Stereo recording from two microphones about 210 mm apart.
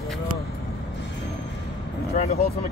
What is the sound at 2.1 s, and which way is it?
Speech, 30° left (ahead or behind).